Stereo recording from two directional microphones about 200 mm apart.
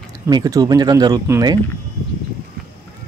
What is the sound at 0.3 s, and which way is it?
Speech, 20° right (ahead or behind).